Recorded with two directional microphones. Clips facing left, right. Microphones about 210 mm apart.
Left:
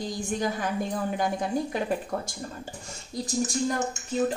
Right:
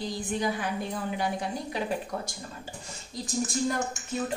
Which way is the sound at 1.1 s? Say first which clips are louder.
Left 4 dB; 45° left (ahead or behind).